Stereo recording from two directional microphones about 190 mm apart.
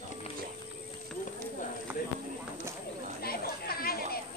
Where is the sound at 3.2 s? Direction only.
50° left (ahead or behind).